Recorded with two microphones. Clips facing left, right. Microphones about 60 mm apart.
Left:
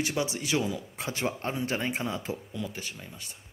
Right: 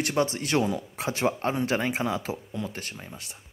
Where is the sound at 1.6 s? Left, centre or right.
Right.